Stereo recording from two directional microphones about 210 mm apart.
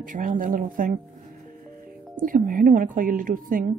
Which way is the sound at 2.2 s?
40° right (ahead or behind).